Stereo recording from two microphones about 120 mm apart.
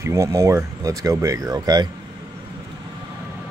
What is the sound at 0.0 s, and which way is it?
Speech, 25° right (ahead or behind).